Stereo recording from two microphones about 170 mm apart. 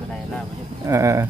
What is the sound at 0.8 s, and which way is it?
Speech, 20° right (ahead or behind).